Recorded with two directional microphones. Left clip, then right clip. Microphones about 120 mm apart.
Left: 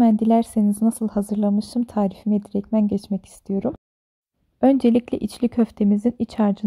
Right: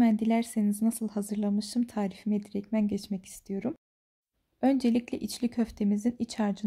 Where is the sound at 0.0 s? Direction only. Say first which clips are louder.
Left 9 dB; 70° left (ahead or behind).